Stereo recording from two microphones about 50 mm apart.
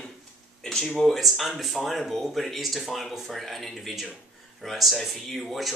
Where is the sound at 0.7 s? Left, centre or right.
Centre.